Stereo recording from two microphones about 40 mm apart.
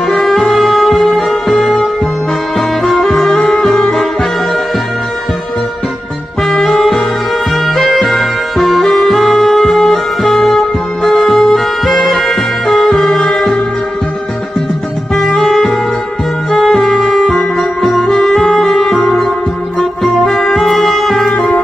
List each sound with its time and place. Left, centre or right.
0.0 s music: centre
6.4 s music: centre
15.5 s music: centre